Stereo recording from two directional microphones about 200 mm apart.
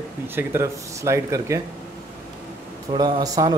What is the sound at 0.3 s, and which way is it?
Speech, 10° right (ahead or behind).